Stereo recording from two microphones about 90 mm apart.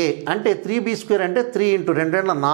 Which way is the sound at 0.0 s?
15° right (ahead or behind).